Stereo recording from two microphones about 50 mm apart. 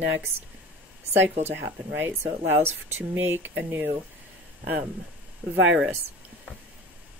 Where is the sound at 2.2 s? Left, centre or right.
Right.